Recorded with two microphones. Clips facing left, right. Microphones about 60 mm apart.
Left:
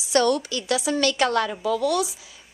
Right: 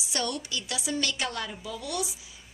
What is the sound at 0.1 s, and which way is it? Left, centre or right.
Speech, left.